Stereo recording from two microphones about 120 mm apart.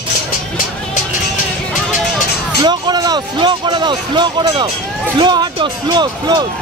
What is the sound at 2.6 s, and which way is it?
Music, 35° right (ahead or behind).